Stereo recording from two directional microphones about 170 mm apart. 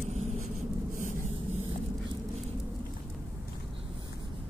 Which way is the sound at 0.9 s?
45° right (ahead or behind).